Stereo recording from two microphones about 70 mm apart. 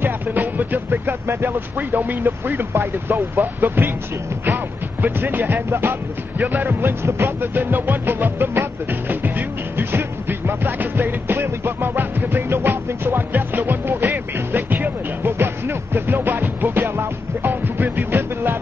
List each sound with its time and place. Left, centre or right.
0.0 s speech: right
5.0 s speech: right
9.8 s music: right